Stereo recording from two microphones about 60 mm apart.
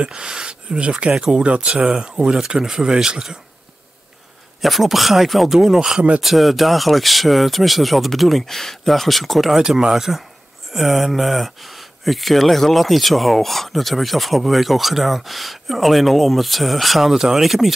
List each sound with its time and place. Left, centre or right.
0.0 s speech: centre
4.6 s speech: centre
9.6 s speech: centre